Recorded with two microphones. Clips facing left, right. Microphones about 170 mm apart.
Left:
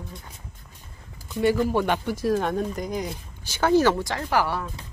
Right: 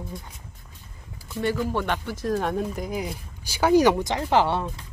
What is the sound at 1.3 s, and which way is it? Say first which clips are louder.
Speech: left 4 dB; 10° left (ahead or behind).